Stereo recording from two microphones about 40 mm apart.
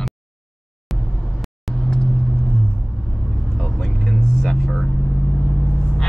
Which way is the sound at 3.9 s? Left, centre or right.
Centre.